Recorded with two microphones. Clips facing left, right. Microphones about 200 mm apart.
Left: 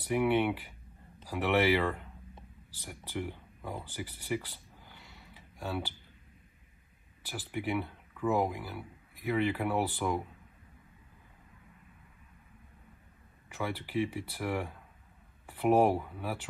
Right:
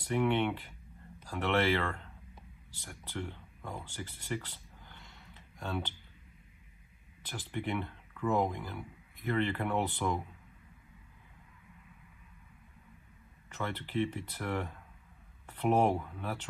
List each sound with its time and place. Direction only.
0.1 s speech: 10° left (ahead or behind)
7.2 s speech: 5° left (ahead or behind)
13.5 s speech: 10° left (ahead or behind)